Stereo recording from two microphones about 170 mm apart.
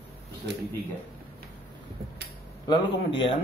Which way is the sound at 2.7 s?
25° left (ahead or behind).